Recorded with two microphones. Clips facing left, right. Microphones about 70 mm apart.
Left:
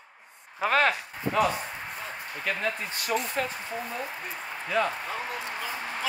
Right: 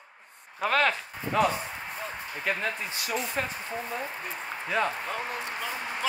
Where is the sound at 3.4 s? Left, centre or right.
Centre.